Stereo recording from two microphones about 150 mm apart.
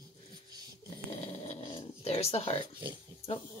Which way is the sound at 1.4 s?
40° left (ahead or behind).